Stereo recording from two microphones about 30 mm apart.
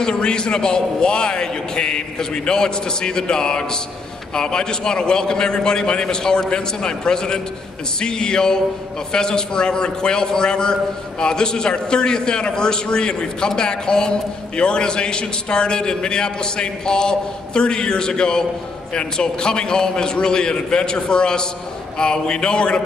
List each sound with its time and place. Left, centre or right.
0.0 s a man's voice: left